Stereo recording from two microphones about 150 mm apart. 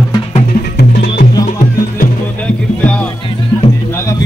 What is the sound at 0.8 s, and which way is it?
Music, 90° left.